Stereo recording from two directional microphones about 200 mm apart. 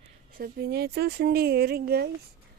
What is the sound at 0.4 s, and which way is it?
A woman's voice, 50° right (ahead or behind).